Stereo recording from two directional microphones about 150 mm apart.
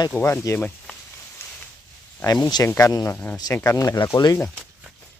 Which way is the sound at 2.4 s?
25° left (ahead or behind).